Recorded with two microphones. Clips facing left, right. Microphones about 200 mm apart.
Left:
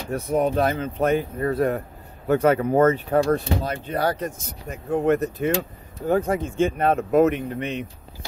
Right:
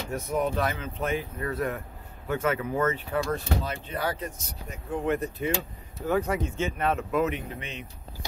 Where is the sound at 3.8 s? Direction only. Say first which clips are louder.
Left 7 dB; 40° left (ahead or behind); by 7.8 s 55° left (ahead or behind).